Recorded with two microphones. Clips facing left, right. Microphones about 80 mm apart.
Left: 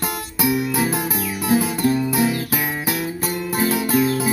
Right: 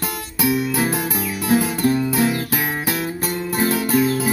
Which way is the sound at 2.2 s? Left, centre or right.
Right.